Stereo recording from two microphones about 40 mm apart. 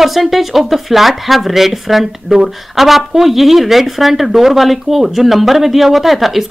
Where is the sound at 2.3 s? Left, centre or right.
Centre.